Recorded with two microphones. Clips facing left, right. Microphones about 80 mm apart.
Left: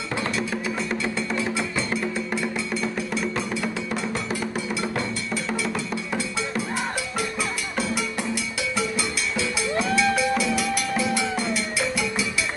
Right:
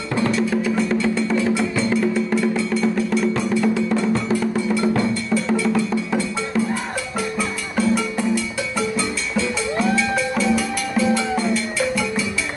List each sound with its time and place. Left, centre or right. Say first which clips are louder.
0.4 s music: right 7 dB; centre
7.7 s music: right 10 dB; centre
9.9 s music: right 1 dB; centre